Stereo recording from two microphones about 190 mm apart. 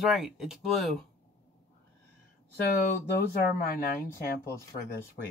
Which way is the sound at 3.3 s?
50° left (ahead or behind).